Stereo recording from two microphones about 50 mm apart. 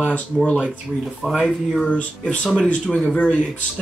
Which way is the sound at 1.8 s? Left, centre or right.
Left.